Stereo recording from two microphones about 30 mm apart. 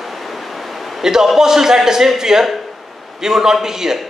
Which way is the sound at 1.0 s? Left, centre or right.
Centre.